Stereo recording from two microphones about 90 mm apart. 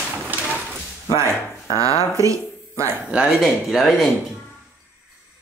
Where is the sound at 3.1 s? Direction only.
10° right (ahead or behind).